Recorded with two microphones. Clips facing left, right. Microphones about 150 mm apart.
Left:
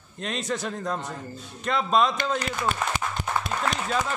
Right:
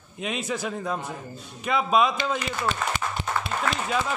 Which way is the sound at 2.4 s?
45° left (ahead or behind).